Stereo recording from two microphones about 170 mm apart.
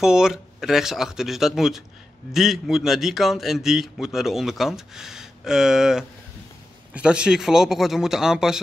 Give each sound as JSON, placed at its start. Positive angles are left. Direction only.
{"t": 0.0, "sound": "a man's voice", "side_deg": -5}